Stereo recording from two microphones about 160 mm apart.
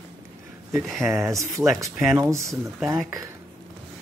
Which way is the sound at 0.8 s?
Centre (ahead or behind).